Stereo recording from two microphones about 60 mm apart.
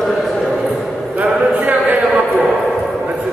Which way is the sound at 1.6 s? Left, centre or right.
Right.